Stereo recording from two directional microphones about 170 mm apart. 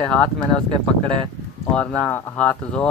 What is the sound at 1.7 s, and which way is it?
Speech, 5° left (ahead or behind).